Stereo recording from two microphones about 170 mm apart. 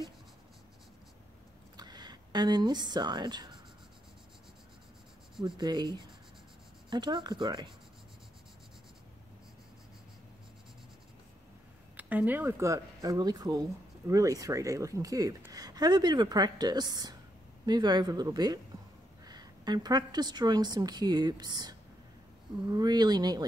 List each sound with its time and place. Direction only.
1.8 s speech: 25° right (ahead or behind)
5.4 s speech: 25° right (ahead or behind)
12.0 s a woman's voice: 10° right (ahead or behind); by 23.4 s 25° right (ahead or behind)